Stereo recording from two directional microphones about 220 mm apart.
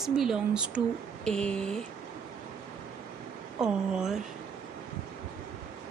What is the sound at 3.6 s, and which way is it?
Speech, 5° right (ahead or behind).